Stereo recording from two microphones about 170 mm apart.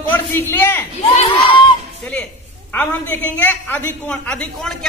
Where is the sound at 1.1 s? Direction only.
30° left (ahead or behind).